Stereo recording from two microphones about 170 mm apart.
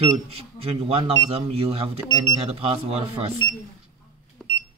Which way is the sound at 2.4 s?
35° right (ahead or behind).